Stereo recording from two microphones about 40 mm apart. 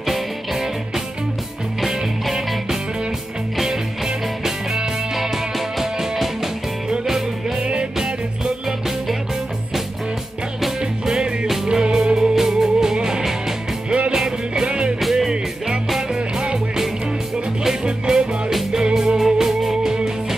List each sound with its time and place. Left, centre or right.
0.0 s music: centre
8.6 s music: centre
10.8 s music: right
11.4 s music: centre
11.8 s music: centre
13.8 s music: right
14.1 s music: centre
15.0 s music: centre